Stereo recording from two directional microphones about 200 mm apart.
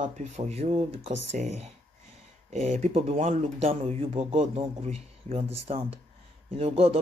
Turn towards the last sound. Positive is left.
turn(degrees=-30)  # may be behind; listen again after turning